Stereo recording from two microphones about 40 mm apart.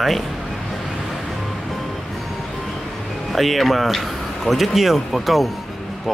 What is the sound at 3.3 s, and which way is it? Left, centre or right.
Speech, centre.